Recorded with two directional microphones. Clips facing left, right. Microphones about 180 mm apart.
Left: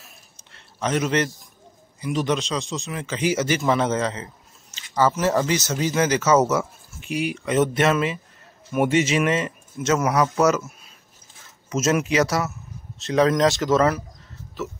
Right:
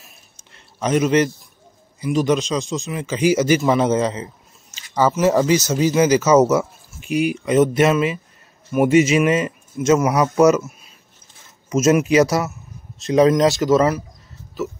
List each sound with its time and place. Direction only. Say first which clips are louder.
0.7 s speech: right 5 dB; 15° right (ahead or behind)
7.1 s speech: right 6 dB; 30° left (ahead or behind)
7.3 s speech: right 4 dB; 15° right (ahead or behind)
11.7 s speech: right 6 dB; 15° right (ahead or behind)